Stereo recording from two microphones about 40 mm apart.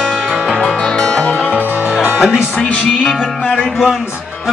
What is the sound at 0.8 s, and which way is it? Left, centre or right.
Music, left.